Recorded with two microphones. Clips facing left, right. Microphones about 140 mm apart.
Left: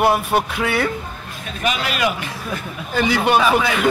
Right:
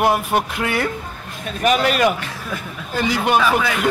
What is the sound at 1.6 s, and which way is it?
Speech, 45° right (ahead or behind).